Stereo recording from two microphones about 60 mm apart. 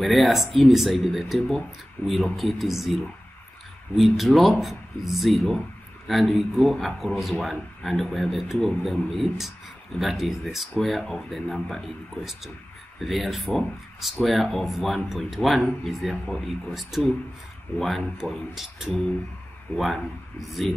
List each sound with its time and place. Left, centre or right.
0.0 s speech: centre
2.0 s speech: left
2.3 s speech: centre